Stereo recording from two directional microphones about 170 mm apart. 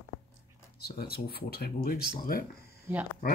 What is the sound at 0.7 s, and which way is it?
Speech, 65° left (ahead or behind).